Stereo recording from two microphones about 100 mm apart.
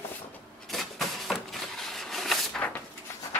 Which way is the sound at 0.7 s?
Centre (ahead or behind).